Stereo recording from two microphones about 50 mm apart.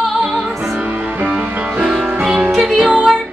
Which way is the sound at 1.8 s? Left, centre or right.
Centre.